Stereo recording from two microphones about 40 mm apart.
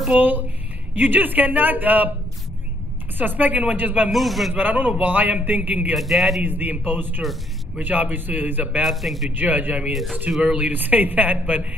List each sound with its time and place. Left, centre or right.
0.2 s a man's voice: right
3.2 s a man's voice: right
4.1 s a man's voice: centre
4.6 s a man's voice: right
5.9 s a man's voice: centre
6.4 s a man's voice: right
8.8 s a man's voice: centre
9.3 s a man's voice: right
10.3 s speech: right
10.7 s a man's voice: right